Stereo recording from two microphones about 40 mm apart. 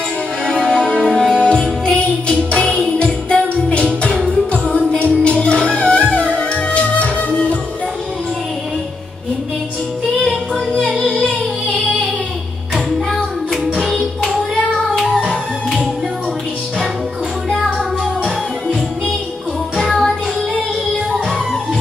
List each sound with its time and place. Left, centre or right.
0.5 s music: left
10.8 s music: centre
12.7 s music: centre
17.7 s music: centre